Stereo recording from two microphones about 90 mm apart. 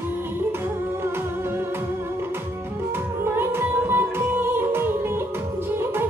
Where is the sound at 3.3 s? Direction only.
25° right (ahead or behind).